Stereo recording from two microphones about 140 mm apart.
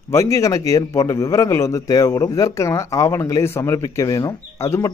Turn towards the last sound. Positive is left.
turn(degrees=20)  # may be behind; listen again after turning